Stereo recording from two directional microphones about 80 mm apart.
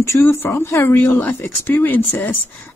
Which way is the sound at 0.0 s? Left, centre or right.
Left.